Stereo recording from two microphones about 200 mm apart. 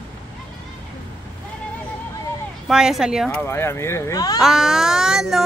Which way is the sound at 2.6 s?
Centre (ahead or behind).